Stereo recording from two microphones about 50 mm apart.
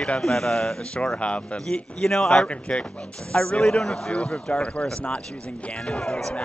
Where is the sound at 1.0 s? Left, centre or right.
Left.